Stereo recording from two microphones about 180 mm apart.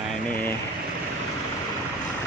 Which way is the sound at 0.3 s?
10° left (ahead or behind).